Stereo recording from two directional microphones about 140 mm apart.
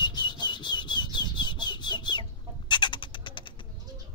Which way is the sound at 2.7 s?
35° left (ahead or behind).